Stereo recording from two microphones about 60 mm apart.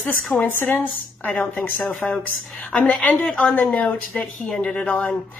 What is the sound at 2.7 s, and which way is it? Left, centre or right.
Speech, centre.